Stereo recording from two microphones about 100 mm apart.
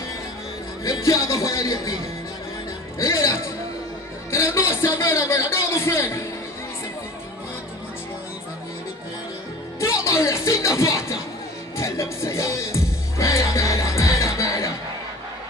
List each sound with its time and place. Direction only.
0.8 s speech: 35° left (ahead or behind)
3.0 s music: 30° left (ahead or behind)
4.3 s a sound: 30° left (ahead or behind)
9.8 s music: 30° left (ahead or behind)